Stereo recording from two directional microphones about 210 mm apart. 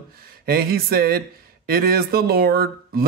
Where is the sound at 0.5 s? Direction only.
45° right (ahead or behind).